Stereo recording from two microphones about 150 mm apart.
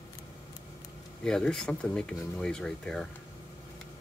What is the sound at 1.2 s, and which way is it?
Speech, 5° left (ahead or behind).